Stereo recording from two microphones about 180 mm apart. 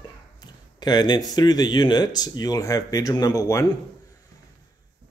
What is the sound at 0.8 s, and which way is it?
Speech, 25° left (ahead or behind).